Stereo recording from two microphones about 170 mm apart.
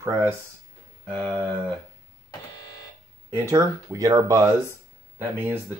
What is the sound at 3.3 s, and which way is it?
Speech, 20° right (ahead or behind).